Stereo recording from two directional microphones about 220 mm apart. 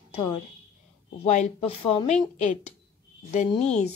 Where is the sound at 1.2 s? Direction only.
30° left (ahead or behind).